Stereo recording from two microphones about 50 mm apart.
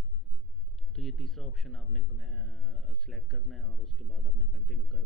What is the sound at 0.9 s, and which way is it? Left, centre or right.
A man's voice, centre.